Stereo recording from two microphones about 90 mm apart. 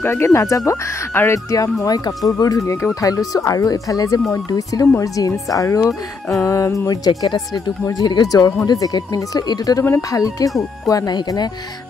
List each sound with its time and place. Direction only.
0.0 s speech: 30° left (ahead or behind)
7.1 s speech: 50° left (ahead or behind)